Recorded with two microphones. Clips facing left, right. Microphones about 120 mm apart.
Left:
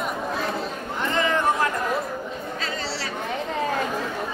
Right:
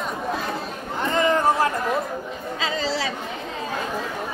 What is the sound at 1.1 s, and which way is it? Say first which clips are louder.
Chatter: right 3 dB; 40° right (ahead or behind).